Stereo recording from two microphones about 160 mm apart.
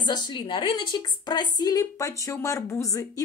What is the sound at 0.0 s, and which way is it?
A woman's voice, 25° left (ahead or behind).